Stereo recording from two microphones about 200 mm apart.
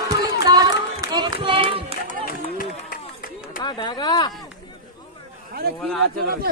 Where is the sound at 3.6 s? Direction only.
20° left (ahead or behind).